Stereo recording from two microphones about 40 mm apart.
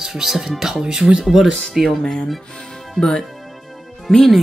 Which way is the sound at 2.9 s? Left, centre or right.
Centre.